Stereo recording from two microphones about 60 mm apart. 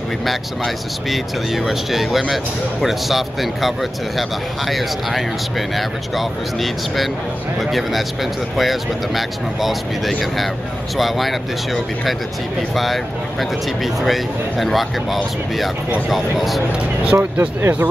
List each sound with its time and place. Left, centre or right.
0.2 s speech: centre
16.7 s speech: right
17.2 s speech: right